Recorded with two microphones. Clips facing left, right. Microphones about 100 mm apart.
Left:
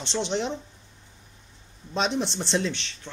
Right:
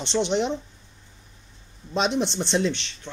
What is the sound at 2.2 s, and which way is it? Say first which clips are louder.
Speech: right 3 dB; 5° left (ahead or behind).